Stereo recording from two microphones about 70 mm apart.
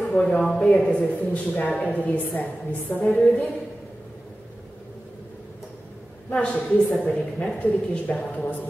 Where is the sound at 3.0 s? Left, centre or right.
Centre.